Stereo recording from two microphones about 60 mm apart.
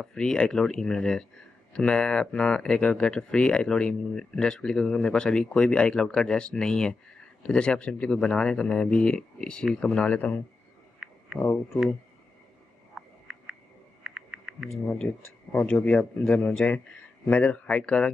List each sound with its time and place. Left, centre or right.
0.0 s speech: centre
13.0 s frog: centre
14.0 s typing: centre
15.0 s speech: left